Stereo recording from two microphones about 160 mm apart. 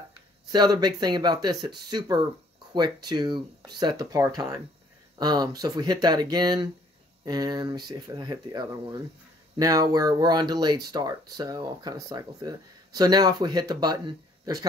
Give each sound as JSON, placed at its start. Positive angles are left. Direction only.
{"t": 0.5, "sound": "speech", "side_deg": -25}